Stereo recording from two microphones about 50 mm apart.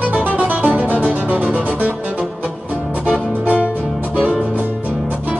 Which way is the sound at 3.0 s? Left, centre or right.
Right.